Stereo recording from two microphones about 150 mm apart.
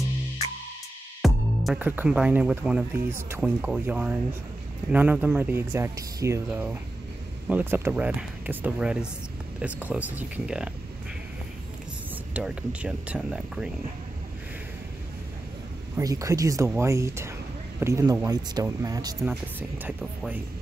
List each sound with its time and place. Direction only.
1.2 s music: centre (ahead or behind)
1.8 s speech: 10° right (ahead or behind)
12.4 s speech: 10° right (ahead or behind)
16.0 s speech: 25° right (ahead or behind)
20.0 s speech: 10° right (ahead or behind)